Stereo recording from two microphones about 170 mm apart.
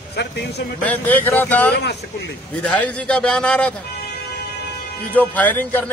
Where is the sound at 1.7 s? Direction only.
85° left.